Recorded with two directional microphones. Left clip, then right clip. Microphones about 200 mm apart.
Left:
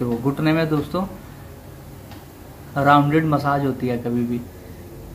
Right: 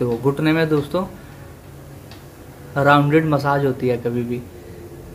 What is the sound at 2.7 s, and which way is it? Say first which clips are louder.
Speech: right 1 dB; 20° right (ahead or behind).